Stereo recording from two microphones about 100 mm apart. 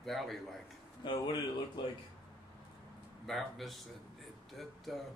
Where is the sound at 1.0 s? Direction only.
50° left (ahead or behind).